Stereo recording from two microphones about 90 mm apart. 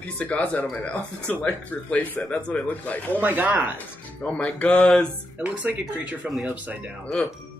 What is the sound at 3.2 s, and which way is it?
Speech, 20° right (ahead or behind).